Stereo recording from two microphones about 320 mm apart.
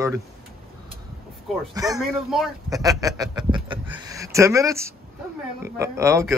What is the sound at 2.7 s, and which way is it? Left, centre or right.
Speech, centre.